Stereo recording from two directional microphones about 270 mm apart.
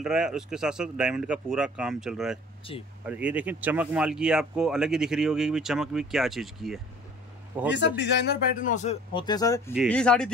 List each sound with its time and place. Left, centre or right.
0.0 s speech: centre
2.7 s a man's voice: centre
3.1 s speech: centre
8.0 s a man's voice: left; by 10.3 s centre